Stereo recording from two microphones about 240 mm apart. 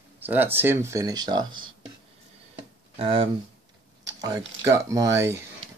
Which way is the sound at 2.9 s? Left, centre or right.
Right.